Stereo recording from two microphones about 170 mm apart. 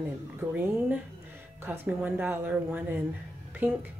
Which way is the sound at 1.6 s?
10° right (ahead or behind).